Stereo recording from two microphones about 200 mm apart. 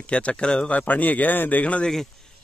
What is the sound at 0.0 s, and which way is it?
Speech, 5° left (ahead or behind).